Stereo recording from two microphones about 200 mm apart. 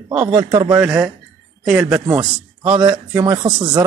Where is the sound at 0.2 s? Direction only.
20° right (ahead or behind).